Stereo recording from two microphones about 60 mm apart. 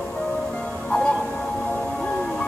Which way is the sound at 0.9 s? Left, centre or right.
Centre.